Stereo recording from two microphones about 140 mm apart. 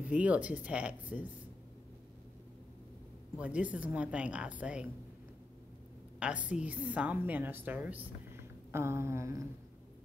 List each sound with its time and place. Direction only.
0.0 s a woman's voice: 10° right (ahead or behind)
3.3 s a woman's voice: 10° right (ahead or behind)
6.1 s a woman's voice: 10° right (ahead or behind)
8.7 s a sound: 20° right (ahead or behind)